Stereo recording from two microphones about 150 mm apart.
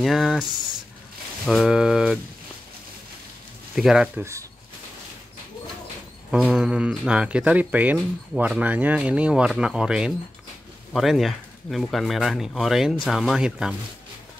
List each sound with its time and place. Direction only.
0.0 s speech: centre (ahead or behind)
3.7 s speech: 5° right (ahead or behind)
4.2 s speech: 20° right (ahead or behind)
6.3 s speech: 5° right (ahead or behind)